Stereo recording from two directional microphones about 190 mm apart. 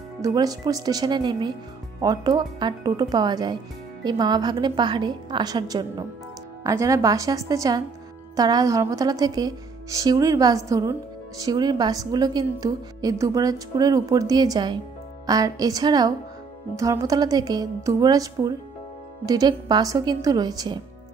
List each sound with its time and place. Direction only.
0.2 s a woman's voice: 20° right (ahead or behind)